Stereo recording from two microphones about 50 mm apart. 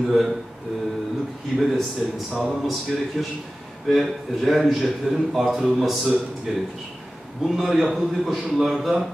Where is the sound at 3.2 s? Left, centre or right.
Centre.